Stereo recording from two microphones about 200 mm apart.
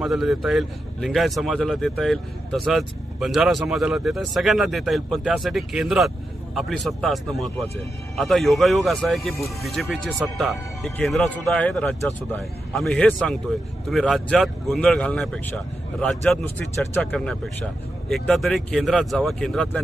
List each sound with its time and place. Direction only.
0.0 s speech: centre (ahead or behind)